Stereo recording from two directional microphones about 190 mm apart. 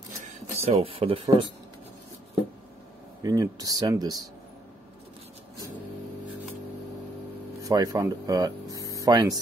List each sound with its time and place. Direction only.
0.3 s speech: 30° right (ahead or behind)
3.2 s speech: 20° right (ahead or behind)
7.6 s speech: 20° right (ahead or behind)